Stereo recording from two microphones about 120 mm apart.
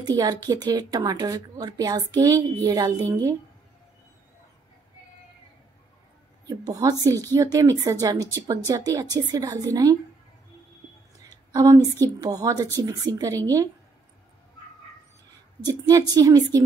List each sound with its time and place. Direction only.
0.0 s a woman's voice: 35° right (ahead or behind)
6.4 s a woman's voice: 35° right (ahead or behind)
11.2 s a woman's voice: 30° right (ahead or behind)
15.6 s a woman's voice: 30° right (ahead or behind)